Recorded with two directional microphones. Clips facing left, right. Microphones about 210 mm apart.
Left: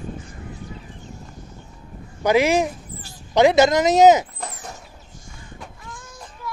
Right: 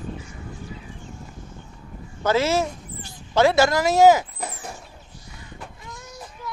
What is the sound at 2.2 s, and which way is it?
Speech, 15° left (ahead or behind).